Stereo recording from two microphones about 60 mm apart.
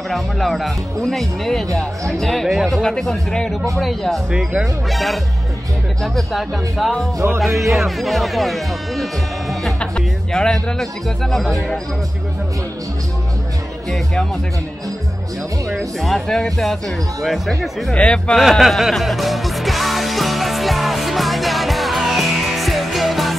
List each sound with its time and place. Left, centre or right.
0.1 s speech: centre
9.8 s speech: centre
13.8 s speech: centre
15.7 s speech: centre
17.9 s speech: centre
18.3 s music: centre